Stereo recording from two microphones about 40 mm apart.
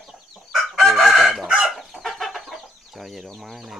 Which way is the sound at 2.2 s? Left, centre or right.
Centre.